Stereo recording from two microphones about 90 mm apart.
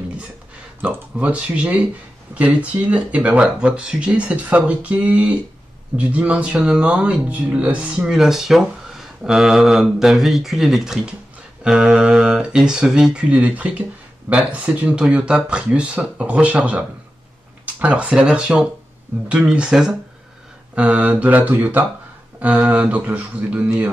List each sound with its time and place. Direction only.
0.8 s speech: 15° right (ahead or behind)
22.5 s speech: 5° right (ahead or behind)
22.8 s speech: 15° right (ahead or behind)